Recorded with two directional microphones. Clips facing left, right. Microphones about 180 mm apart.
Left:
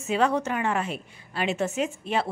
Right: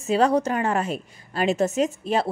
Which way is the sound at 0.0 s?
35° right (ahead or behind).